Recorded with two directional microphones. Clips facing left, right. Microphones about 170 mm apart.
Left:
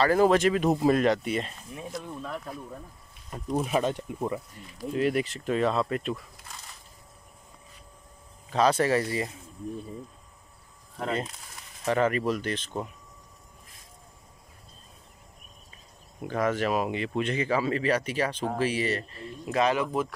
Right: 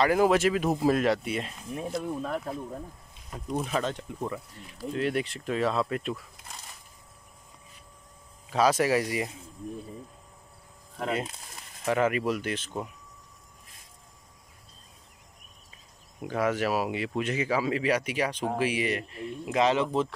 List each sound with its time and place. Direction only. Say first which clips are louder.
0.0 s speech: left 1 dB; 10° right (ahead or behind)
2.0 s speech: right 5 dB; 45° right (ahead or behind)
3.3 s speech: left 3 dB; 5° left (ahead or behind)
4.9 s speech: left 3 dB; centre (ahead or behind)
8.5 s speech: even; 5° right (ahead or behind)
11.0 s speech: even; 5° right (ahead or behind)
16.3 s speech: even; 10° right (ahead or behind); by 20.2 s 25° right (ahead or behind)